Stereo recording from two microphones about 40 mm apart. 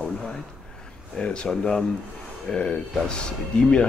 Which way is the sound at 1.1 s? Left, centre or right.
Left.